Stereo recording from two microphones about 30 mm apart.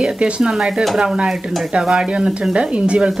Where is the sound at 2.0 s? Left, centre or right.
Right.